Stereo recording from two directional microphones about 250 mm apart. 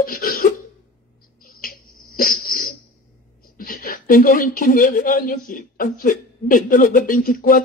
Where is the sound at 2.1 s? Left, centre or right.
Left.